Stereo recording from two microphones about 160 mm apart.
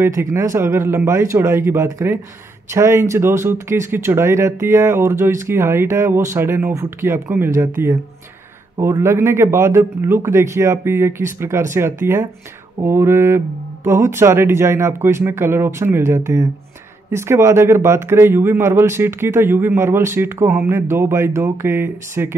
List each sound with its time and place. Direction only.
0.0 s speech: 15° right (ahead or behind)